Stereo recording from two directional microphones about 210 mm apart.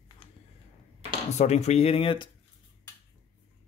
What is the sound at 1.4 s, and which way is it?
Speech, 30° left (ahead or behind).